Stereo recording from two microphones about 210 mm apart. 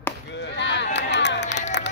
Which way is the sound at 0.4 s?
55° left (ahead or behind).